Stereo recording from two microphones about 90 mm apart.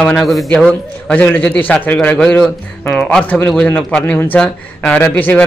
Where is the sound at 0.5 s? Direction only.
10° left (ahead or behind).